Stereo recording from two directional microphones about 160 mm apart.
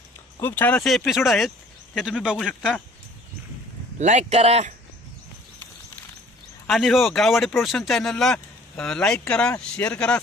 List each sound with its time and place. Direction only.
0.4 s speech: 10° left (ahead or behind)
4.0 s speech: 45° right (ahead or behind)
6.7 s speech: centre (ahead or behind)